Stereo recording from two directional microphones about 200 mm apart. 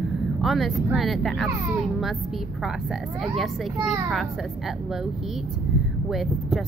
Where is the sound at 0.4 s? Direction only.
Centre (ahead or behind).